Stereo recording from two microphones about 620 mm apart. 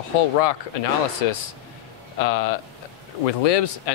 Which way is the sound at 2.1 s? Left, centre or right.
Left.